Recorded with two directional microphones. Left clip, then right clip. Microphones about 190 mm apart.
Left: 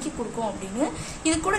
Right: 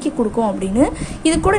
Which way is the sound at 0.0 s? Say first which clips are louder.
Right 11 dB; 40° right (ahead or behind).